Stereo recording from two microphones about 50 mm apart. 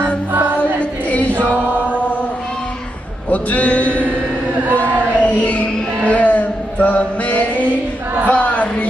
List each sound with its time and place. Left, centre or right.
0.0 s choir: right
3.3 s music: left
4.7 s a sound: left